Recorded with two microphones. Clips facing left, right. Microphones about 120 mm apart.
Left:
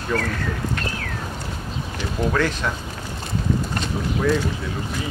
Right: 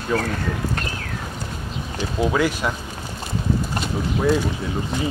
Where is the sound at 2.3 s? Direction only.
10° right (ahead or behind).